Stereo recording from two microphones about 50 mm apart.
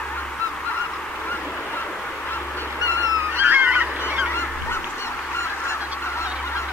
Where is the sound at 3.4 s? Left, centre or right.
Right.